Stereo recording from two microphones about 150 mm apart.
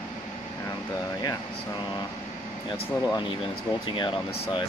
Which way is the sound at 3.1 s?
30° left (ahead or behind).